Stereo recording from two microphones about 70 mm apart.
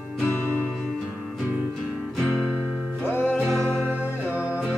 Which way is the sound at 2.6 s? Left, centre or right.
Centre.